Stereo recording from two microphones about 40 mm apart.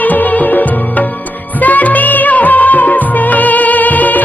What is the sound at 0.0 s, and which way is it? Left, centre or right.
Music, left.